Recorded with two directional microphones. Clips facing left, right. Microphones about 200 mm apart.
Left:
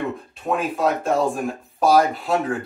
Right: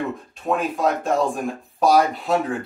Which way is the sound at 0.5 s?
Centre (ahead or behind).